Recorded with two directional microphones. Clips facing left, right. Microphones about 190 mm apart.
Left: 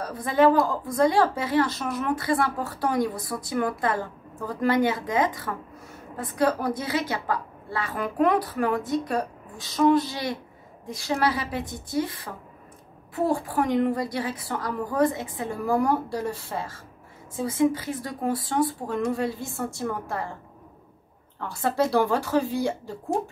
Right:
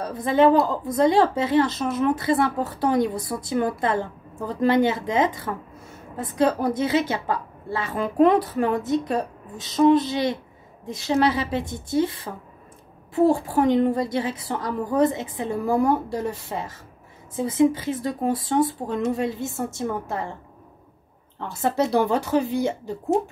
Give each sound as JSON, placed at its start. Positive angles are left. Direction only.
{"t": 0.0, "sound": "a woman's voice", "side_deg": -25}
{"t": 21.4, "sound": "a woman's voice", "side_deg": -20}